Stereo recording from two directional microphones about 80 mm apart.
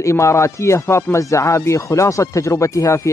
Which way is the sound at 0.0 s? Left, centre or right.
Left.